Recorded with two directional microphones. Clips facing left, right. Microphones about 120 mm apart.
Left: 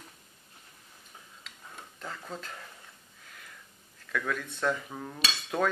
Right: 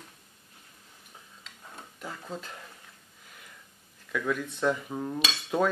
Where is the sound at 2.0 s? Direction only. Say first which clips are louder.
Right 2 dB; 10° right (ahead or behind).